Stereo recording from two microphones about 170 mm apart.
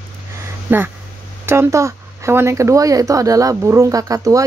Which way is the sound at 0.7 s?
10° right (ahead or behind).